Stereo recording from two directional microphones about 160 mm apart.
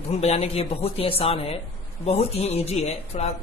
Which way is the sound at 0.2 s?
40° left (ahead or behind).